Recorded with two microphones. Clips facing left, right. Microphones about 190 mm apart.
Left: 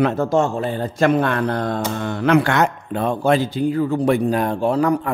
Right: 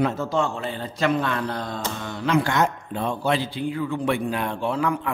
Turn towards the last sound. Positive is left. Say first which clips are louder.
# left 7 dB
turn(degrees=40)  # may be behind; listen again after turning